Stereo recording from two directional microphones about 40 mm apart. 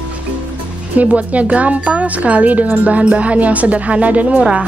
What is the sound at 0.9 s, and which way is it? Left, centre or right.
A woman's voice, right.